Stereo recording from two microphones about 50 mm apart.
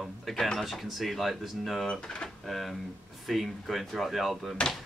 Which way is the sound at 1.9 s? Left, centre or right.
Centre.